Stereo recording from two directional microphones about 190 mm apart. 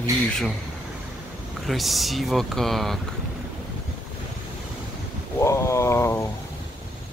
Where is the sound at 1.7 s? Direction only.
Centre (ahead or behind).